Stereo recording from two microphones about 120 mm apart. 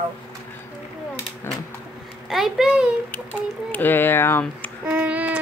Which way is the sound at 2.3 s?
Centre (ahead or behind).